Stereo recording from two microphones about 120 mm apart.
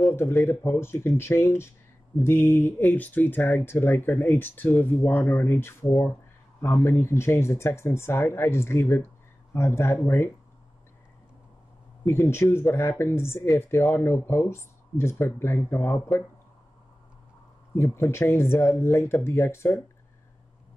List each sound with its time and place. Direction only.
0.1 s speech: 20° left (ahead or behind)
12.1 s speech: 20° left (ahead or behind)
17.7 s speech: 20° left (ahead or behind)